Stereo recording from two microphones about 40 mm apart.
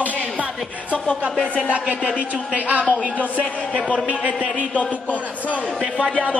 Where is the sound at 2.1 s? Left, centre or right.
Right.